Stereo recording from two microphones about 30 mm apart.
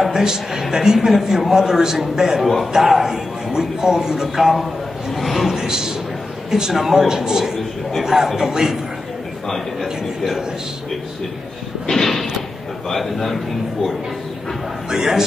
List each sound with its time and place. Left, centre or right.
0.0 s a man's voice: centre
2.4 s a man's voice: centre
5.1 s a man's voice: centre
5.5 s a man's voice: centre
11.9 s a sound: centre
12.9 s a man's voice: centre
14.9 s a man's voice: centre